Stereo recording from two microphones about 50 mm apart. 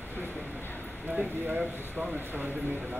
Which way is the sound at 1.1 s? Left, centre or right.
Right.